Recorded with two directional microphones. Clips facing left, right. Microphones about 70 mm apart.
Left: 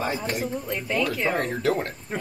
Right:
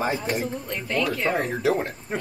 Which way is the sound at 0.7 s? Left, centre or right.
Centre.